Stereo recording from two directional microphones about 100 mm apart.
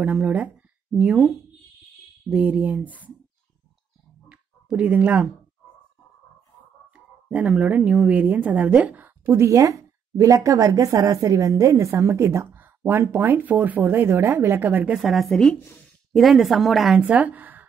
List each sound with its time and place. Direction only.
0.0 s speech: 10° right (ahead or behind)
4.3 s a sound: 15° right (ahead or behind)
6.9 s a woman's voice: 15° right (ahead or behind)
17.0 s speech: 15° right (ahead or behind)